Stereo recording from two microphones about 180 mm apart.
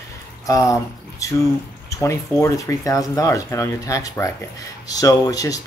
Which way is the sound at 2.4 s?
15° left (ahead or behind).